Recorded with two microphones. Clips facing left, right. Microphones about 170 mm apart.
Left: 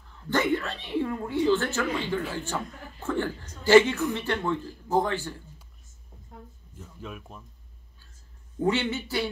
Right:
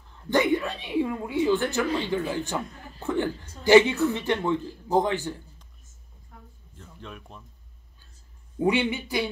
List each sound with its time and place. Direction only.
0.3 s a woman's voice: 15° right (ahead or behind)
6.8 s speech: 5° left (ahead or behind)
8.5 s a woman's voice: 15° right (ahead or behind)